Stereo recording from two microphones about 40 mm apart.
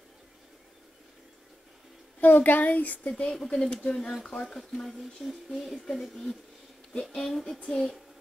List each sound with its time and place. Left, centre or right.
2.1 s speech: left
3.1 s speech: left
4.6 s speech: centre